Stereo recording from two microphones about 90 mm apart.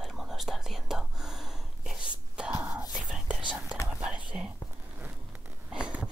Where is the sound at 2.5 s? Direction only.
35° right (ahead or behind).